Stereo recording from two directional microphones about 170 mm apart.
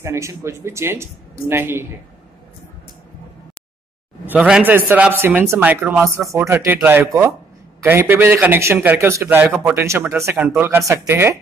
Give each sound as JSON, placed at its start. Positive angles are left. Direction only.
{"t": 0.0, "sound": "a man's voice", "side_deg": -15}
{"t": 4.3, "sound": "a man's voice", "side_deg": -5}